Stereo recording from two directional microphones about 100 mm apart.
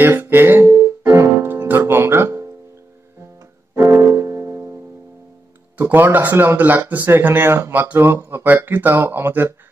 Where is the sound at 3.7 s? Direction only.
25° right (ahead or behind).